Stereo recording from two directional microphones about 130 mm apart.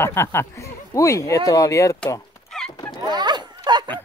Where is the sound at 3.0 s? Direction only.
35° right (ahead or behind).